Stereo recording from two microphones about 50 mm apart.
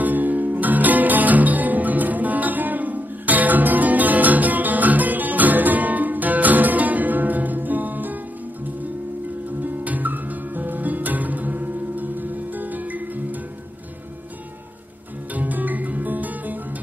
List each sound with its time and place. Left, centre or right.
0.0 s music: right
9.6 s music: right
15.3 s music: right